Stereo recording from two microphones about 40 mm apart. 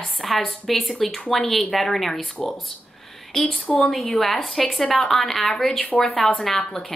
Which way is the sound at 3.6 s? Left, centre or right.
Left.